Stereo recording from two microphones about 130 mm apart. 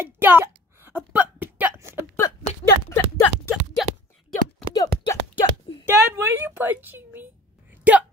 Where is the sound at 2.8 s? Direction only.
20° left (ahead or behind).